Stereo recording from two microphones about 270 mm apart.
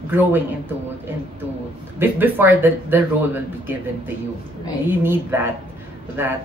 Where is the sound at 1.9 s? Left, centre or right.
Centre.